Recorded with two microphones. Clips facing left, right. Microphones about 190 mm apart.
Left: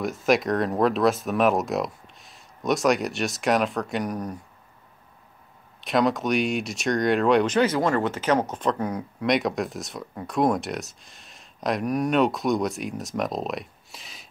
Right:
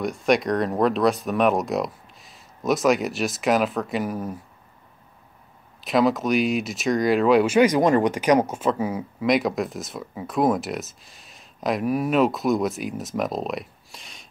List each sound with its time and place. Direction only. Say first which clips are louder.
0.0 s speech: right 1 dB; centre (ahead or behind)
5.8 s speech: right 2 dB; centre (ahead or behind)